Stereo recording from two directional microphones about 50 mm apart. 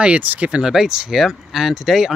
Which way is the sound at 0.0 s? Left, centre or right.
Right.